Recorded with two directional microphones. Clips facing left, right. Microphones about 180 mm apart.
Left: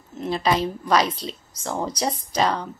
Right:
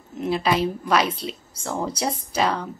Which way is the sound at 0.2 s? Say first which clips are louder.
Right 1 dB; 5° right (ahead or behind).